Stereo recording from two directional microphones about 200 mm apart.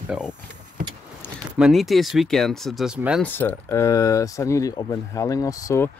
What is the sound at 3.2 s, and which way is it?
Speech, 10° left (ahead or behind).